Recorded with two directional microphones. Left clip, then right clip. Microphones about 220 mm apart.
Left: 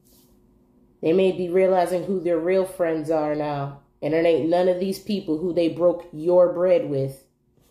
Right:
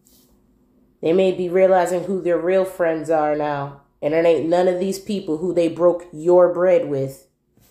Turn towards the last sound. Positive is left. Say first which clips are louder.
# right 3 dB
turn(degrees=-15)  # may be behind; listen again after turning